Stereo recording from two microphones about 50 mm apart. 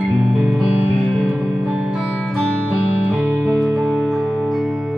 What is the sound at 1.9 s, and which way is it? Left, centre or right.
Music, centre.